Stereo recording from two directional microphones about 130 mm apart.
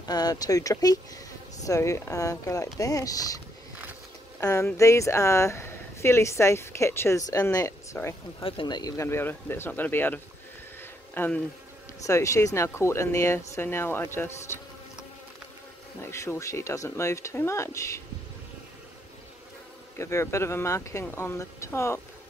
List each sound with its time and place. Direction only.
0.0 s speech: 30° left (ahead or behind)
4.4 s speech: 20° left (ahead or behind)
8.4 s speech: 45° left (ahead or behind); by 10.2 s 15° left (ahead or behind)
10.8 s a sound: 15° left (ahead or behind)
12.0 s speech: 25° left (ahead or behind)
16.0 s speech: 20° left (ahead or behind)
20.0 s speech: 20° left (ahead or behind)